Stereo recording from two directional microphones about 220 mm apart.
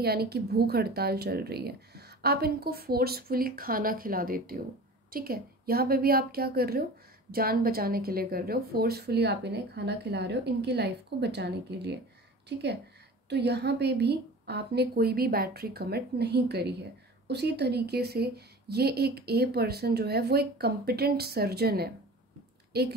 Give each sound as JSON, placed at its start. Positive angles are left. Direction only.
{"t": 0.0, "sound": "a woman's voice", "side_deg": -45}